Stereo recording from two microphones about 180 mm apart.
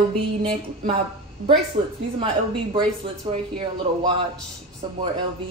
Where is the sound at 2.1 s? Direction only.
30° right (ahead or behind).